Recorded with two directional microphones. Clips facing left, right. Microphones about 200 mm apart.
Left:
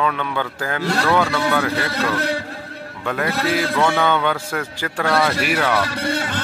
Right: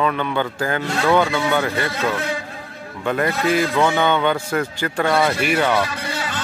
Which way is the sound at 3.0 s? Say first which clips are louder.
Right 2 dB; centre (ahead or behind).